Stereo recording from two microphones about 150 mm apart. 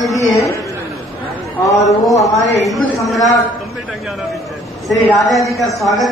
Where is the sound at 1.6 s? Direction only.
20° left (ahead or behind).